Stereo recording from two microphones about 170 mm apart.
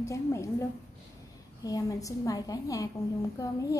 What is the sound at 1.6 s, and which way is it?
A woman's voice, 20° left (ahead or behind).